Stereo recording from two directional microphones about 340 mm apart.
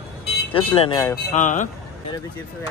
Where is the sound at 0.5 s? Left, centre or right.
Centre.